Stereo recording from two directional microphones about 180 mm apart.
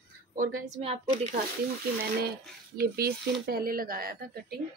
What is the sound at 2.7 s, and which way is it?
Speech, 60° right (ahead or behind).